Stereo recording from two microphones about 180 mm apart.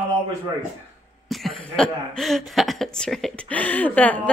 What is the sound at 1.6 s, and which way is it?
A woman's voice, 5° left (ahead or behind).